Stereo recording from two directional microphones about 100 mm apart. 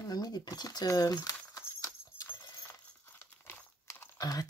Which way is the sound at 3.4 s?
25° left (ahead or behind).